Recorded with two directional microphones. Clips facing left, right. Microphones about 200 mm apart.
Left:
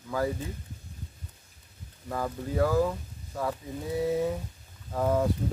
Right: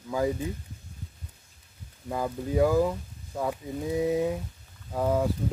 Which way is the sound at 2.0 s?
15° right (ahead or behind).